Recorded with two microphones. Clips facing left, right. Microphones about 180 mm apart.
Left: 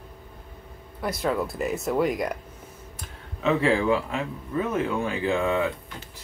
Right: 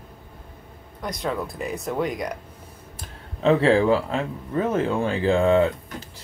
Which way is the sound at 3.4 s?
30° right (ahead or behind).